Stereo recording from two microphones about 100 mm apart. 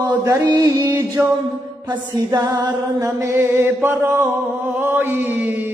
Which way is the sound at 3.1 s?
25° right (ahead or behind).